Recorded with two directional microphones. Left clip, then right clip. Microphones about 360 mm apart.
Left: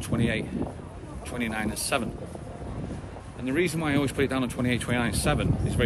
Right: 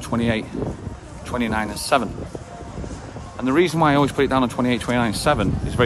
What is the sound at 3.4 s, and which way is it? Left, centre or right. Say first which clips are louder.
Speech: right 10 dB; centre.